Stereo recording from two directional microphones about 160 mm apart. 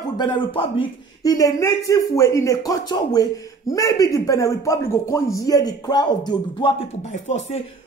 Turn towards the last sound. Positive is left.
turn(degrees=45)  # may be behind; listen again after turning